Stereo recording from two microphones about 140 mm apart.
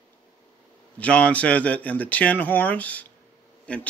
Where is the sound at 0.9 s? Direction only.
10° left (ahead or behind).